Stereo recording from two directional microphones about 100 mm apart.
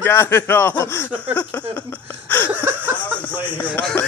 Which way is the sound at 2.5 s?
20° right (ahead or behind).